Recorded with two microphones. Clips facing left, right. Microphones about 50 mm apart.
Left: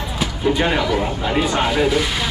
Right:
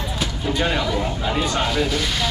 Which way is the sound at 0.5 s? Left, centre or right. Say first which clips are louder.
Left 4 dB; centre.